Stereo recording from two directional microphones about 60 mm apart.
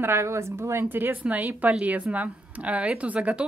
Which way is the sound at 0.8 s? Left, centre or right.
Right.